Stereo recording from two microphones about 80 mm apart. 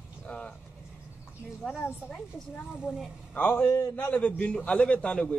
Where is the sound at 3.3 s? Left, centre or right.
Left.